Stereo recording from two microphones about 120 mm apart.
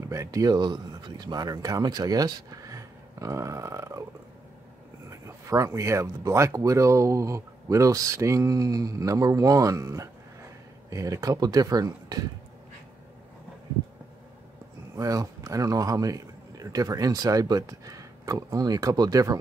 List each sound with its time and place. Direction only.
0.1 s speech: 25° right (ahead or behind)
5.1 s speech: 25° right (ahead or behind)
15.0 s speech: 25° right (ahead or behind)